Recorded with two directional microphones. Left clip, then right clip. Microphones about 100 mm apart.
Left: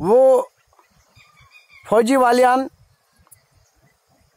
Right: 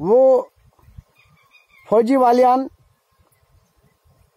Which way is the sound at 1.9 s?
5° left (ahead or behind).